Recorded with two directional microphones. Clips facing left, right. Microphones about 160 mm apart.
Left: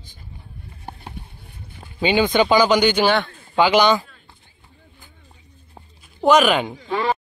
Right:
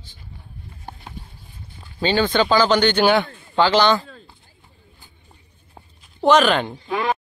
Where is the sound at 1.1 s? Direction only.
65° left (ahead or behind).